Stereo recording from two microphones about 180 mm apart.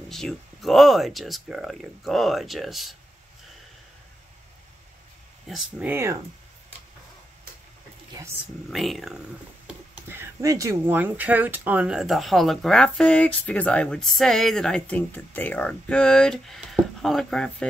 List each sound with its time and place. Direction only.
0.1 s speech: centre (ahead or behind)
5.5 s speech: 5° right (ahead or behind)
8.1 s speech: 15° right (ahead or behind)
8.6 s speech: centre (ahead or behind)
10.0 s speech: 15° right (ahead or behind); by 17.6 s 5° left (ahead or behind)